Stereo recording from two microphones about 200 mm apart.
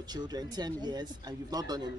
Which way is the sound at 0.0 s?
20° right (ahead or behind).